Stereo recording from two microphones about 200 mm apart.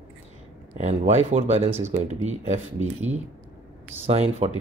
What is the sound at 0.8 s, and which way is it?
Speech, 30° right (ahead or behind).